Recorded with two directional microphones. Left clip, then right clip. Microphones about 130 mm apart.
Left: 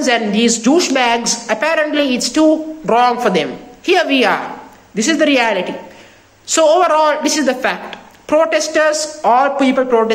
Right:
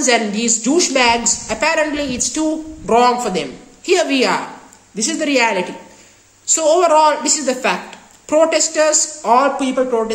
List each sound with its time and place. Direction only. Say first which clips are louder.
0.0 s speech: left 2 dB; 25° right (ahead or behind)